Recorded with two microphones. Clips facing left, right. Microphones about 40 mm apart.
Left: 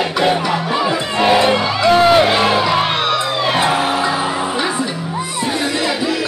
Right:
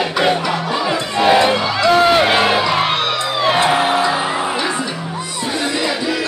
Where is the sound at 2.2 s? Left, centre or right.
Centre.